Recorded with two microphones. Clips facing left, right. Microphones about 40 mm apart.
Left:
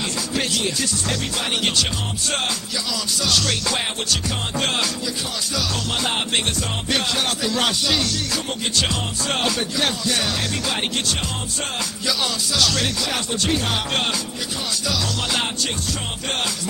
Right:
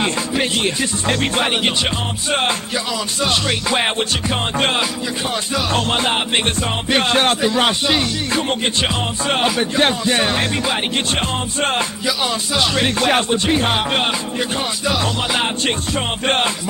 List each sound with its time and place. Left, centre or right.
0.3 s music: right
3.3 s music: right
5.7 s music: right
7.5 s music: right
12.5 s music: right
13.0 s music: right
13.5 s music: right